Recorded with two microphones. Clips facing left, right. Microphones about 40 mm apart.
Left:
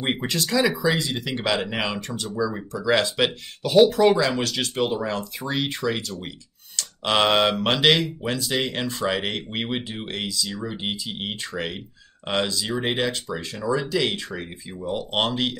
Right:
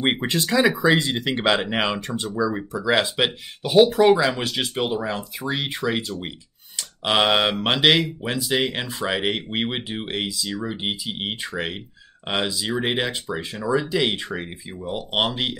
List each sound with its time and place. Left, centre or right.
0.0 s speech: right
0.7 s speech: right; by 15.6 s centre